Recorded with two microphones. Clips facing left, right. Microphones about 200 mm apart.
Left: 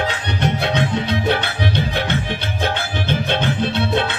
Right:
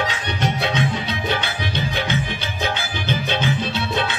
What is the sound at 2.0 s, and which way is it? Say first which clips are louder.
Music: left 2 dB; 60° left (ahead or behind).